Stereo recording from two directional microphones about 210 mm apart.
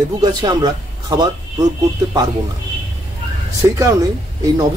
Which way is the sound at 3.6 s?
15° right (ahead or behind).